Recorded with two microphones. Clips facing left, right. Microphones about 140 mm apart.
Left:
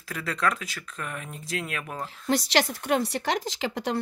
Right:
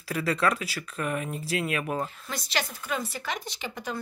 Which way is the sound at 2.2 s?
90° left.